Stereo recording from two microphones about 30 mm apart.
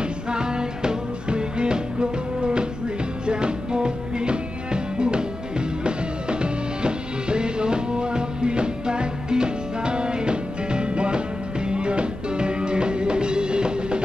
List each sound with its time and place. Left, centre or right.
0.0 s music: right